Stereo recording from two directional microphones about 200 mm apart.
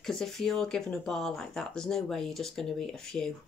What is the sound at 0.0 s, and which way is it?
Speech, centre (ahead or behind).